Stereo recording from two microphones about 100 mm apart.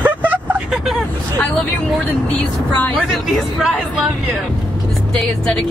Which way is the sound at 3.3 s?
Centre (ahead or behind).